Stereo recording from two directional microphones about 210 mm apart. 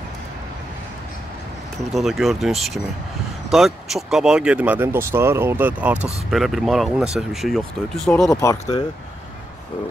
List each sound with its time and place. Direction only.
1.9 s speech: centre (ahead or behind)
8.3 s speech: 15° left (ahead or behind)